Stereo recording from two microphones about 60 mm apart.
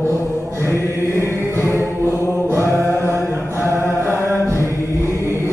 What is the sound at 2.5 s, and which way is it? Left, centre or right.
Mantra, right.